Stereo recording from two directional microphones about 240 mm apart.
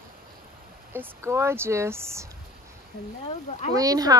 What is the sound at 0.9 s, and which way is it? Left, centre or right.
Speech, centre.